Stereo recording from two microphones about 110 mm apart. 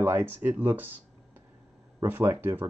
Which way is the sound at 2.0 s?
15° right (ahead or behind).